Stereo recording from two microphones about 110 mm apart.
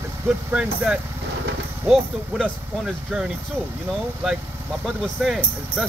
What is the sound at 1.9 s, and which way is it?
Speech, centre (ahead or behind).